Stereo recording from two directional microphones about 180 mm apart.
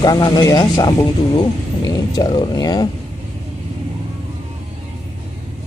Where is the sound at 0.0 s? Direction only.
20° left (ahead or behind).